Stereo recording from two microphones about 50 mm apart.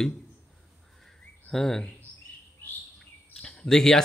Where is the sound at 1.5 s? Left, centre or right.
Centre.